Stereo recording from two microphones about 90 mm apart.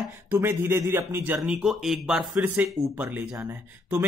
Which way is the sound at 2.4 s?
20° right (ahead or behind).